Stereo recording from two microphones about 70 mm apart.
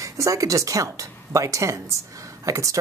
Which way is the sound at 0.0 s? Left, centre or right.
Right.